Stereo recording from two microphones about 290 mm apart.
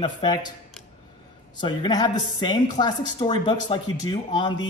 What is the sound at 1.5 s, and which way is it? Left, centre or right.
A man's voice, centre.